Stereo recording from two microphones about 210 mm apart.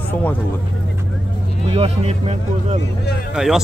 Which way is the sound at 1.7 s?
30° right (ahead or behind).